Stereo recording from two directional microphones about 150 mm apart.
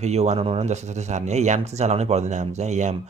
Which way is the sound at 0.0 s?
50° right (ahead or behind).